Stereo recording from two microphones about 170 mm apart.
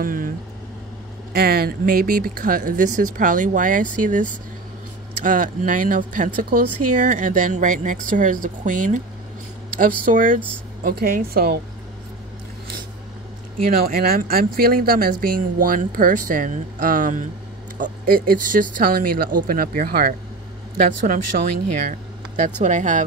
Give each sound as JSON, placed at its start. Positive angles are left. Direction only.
{"t": 0.0, "sound": "vehicle", "side_deg": -55}
{"t": 1.3, "sound": "speech", "side_deg": -65}
{"t": 13.7, "sound": "speech", "side_deg": -60}
{"t": 22.6, "sound": "speech", "side_deg": -45}